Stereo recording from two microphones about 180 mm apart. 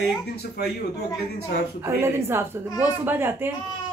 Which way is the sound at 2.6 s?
20° left (ahead or behind).